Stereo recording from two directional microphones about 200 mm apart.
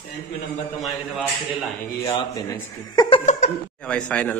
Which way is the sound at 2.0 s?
15° left (ahead or behind).